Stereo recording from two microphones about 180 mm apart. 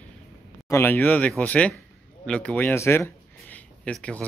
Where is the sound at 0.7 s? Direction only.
15° left (ahead or behind).